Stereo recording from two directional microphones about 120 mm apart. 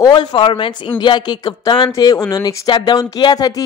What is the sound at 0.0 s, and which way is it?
Speech, 40° left (ahead or behind).